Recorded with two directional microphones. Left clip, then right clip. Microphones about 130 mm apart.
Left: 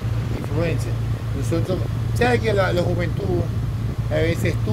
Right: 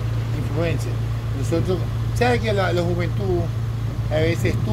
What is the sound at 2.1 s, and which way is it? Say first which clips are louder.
Speech: left 1 dB; 25° left (ahead or behind).